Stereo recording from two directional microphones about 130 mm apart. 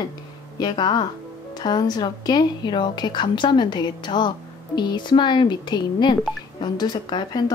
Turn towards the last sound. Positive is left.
turn(degrees=35)  # may be behind; listen again after turning